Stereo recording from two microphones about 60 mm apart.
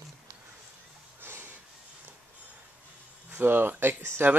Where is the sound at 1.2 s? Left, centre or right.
Right.